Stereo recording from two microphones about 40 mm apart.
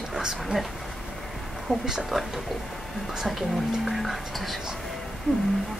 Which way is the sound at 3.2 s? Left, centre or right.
Centre.